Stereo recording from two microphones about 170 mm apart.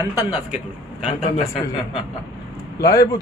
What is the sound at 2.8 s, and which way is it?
Speech, 20° left (ahead or behind).